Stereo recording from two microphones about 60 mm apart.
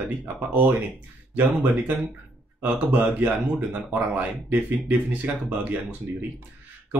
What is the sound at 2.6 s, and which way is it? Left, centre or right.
Speech, right.